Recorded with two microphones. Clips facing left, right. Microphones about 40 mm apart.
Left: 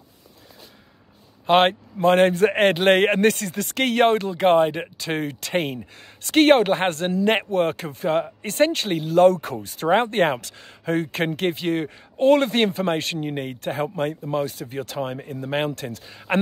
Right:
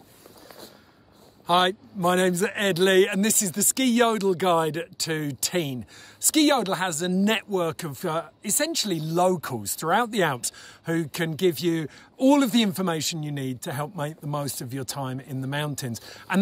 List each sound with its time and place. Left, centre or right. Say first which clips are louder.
1.4 s speech: left 4 dB; left